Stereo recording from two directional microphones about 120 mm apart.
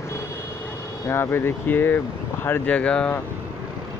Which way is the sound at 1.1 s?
20° left (ahead or behind).